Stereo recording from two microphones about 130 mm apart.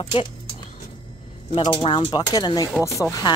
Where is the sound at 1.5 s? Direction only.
40° left (ahead or behind).